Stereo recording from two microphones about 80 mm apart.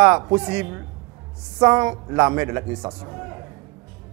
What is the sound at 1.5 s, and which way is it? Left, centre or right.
Speech, right.